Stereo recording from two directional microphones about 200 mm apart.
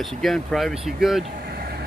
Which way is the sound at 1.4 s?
50° right (ahead or behind).